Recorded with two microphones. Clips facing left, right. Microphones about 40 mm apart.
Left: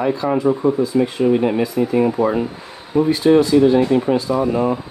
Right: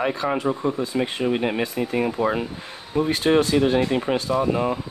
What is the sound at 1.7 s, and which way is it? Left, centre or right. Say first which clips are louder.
Speech: left 7 dB; centre.